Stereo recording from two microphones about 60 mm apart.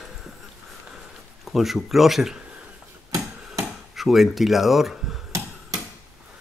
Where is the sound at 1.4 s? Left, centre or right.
Centre.